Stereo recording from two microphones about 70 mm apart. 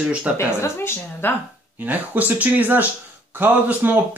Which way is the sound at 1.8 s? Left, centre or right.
Right.